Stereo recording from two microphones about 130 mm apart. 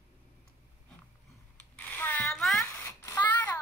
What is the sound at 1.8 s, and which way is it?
Zipper, 15° left (ahead or behind).